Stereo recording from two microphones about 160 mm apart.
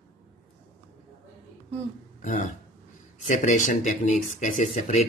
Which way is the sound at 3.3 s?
50° left (ahead or behind).